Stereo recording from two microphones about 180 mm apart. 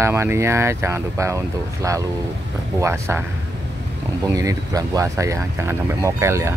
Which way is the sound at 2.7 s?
15° right (ahead or behind).